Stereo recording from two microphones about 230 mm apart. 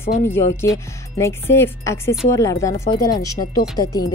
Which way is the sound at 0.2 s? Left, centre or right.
Centre.